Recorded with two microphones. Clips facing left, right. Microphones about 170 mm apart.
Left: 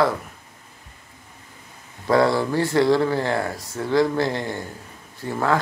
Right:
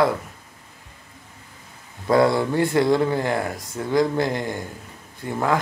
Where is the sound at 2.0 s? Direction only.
20° right (ahead or behind).